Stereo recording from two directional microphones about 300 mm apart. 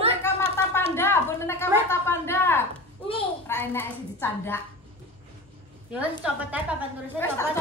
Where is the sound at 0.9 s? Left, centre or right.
Centre.